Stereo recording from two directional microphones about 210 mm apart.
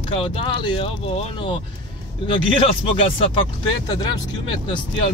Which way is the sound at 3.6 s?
20° left (ahead or behind).